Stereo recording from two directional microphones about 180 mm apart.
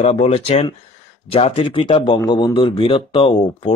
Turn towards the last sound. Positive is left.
turn(degrees=30)  # may be behind; listen again after turning